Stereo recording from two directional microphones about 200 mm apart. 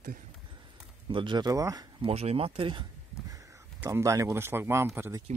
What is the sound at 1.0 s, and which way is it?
Speech, 25° right (ahead or behind).